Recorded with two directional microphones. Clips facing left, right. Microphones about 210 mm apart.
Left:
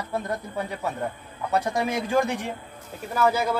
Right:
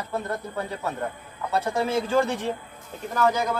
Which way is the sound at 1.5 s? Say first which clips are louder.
Right 1 dB; 15° left (ahead or behind).